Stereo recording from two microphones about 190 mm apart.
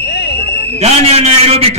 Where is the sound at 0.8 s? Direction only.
35° right (ahead or behind).